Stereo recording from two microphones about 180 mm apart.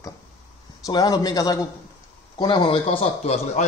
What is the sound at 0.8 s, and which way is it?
A man's voice, 20° left (ahead or behind).